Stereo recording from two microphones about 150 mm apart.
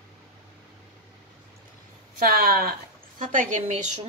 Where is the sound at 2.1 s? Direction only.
90° right.